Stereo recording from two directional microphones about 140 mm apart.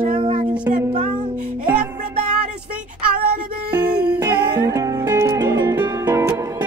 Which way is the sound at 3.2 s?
90° right.